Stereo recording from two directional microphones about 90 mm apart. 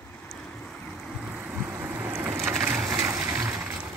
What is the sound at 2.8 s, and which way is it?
Water, 35° right (ahead or behind).